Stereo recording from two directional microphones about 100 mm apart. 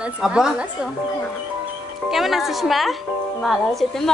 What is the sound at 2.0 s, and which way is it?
Speech, centre (ahead or behind).